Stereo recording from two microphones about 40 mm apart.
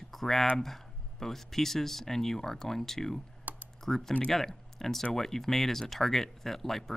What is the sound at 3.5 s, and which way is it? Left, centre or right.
Computer keyboard, right.